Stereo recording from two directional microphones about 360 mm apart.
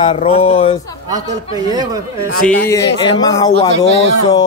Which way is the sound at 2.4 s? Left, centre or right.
Centre.